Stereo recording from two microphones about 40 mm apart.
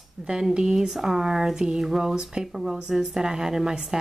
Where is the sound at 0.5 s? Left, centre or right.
Centre.